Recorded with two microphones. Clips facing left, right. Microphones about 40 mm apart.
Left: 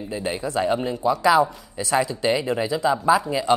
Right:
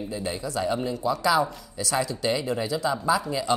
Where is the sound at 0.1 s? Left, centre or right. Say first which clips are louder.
Left 7 dB; left.